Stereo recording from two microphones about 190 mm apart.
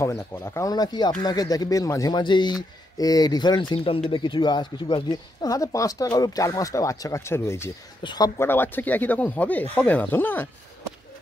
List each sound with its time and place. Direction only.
0.0 s speech: 15° left (ahead or behind)